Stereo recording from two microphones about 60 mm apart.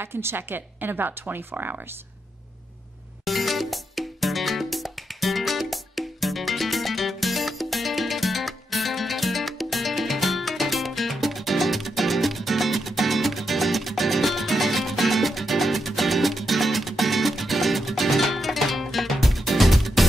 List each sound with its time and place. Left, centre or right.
0.0 s speech: right
3.3 s music: centre